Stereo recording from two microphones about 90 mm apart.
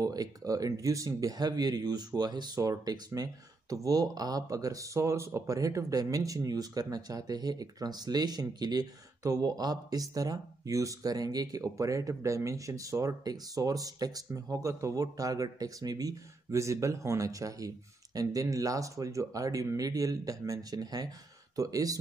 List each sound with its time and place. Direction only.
0.0 s speech: 45° right (ahead or behind)